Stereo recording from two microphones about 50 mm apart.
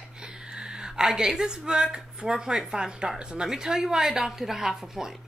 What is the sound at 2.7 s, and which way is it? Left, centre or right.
A woman's voice, centre.